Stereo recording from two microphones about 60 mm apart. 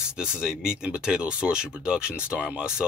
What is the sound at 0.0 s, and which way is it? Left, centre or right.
Speech, centre.